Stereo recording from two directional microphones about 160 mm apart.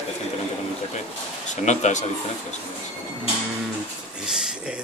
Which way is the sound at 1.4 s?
45° left (ahead or behind).